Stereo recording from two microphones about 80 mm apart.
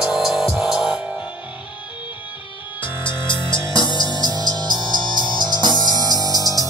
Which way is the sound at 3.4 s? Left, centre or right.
Left.